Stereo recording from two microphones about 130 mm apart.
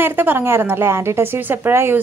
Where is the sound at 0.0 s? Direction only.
15° right (ahead or behind).